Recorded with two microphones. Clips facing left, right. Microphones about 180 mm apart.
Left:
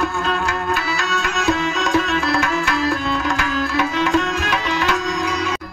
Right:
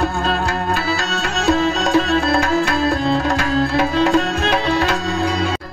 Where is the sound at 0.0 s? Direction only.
35° right (ahead or behind).